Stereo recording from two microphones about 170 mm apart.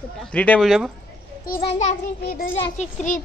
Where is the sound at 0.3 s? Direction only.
5° left (ahead or behind).